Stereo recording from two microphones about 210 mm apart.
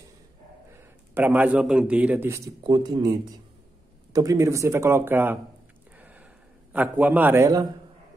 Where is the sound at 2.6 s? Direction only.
20° right (ahead or behind).